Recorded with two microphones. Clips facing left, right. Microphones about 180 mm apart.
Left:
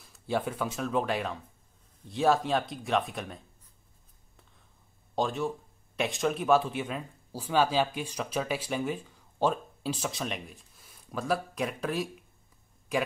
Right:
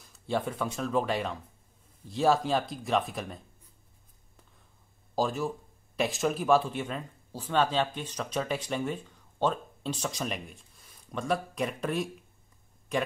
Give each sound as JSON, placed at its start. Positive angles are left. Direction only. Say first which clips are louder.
{"t": 0.0, "sound": "speech", "louder": "even", "side_deg": 0}
{"t": 5.1, "sound": "speech", "louder": "even", "side_deg": 0}